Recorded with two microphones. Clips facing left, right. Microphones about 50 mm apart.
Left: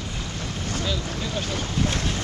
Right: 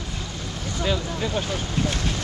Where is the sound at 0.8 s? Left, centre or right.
Centre.